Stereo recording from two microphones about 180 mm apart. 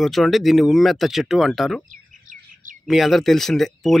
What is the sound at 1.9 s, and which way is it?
Bird, 45° right (ahead or behind).